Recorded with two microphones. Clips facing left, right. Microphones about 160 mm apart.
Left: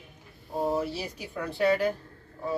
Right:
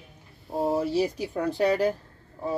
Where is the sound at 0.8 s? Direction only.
40° right (ahead or behind).